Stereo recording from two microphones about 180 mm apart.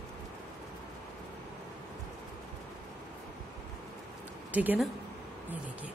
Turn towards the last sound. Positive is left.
turn(degrees=-10)  # may be behind; listen again after turning